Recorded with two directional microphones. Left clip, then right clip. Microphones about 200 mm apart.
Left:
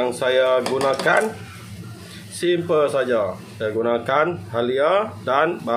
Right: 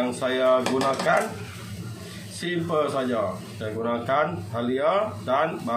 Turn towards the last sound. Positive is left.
turn(degrees=45)  # may be behind; listen again after turning